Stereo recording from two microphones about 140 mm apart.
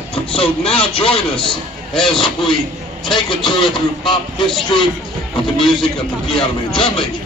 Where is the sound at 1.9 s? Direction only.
5° left (ahead or behind).